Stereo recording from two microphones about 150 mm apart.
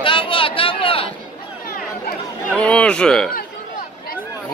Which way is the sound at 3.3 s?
75° left (ahead or behind).